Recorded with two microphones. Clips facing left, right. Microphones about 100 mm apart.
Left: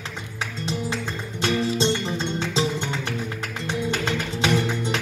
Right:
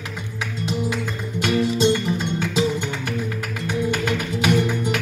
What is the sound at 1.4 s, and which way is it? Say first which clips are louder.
Music: right 3 dB; 30° left (ahead or behind).